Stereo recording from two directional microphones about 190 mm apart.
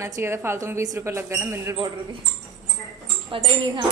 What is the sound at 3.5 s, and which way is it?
Speech, 25° right (ahead or behind).